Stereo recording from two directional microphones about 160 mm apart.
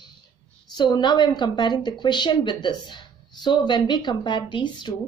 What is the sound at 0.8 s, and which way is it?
A woman's voice, 25° left (ahead or behind).